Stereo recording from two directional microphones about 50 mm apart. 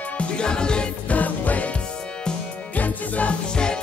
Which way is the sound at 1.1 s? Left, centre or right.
Left.